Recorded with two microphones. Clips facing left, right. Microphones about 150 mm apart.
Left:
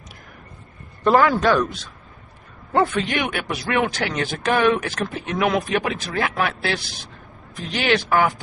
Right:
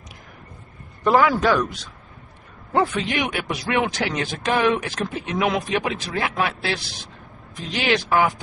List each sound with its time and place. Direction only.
1.1 s a man's voice: 5° right (ahead or behind)
7.8 s a man's voice: 15° right (ahead or behind)